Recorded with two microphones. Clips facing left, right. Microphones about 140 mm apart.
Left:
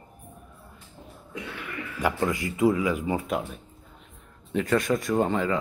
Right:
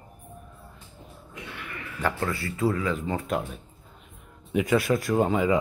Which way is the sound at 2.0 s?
15° left (ahead or behind).